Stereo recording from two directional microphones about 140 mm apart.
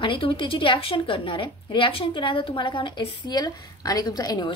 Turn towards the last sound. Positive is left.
turn(degrees=30)  # may be behind; listen again after turning